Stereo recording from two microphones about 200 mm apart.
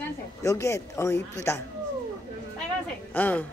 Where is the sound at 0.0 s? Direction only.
15° left (ahead or behind).